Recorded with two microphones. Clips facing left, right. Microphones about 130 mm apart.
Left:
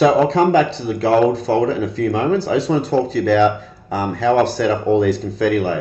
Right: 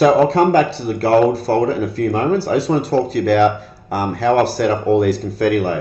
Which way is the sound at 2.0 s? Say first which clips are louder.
Even; 35° right (ahead or behind).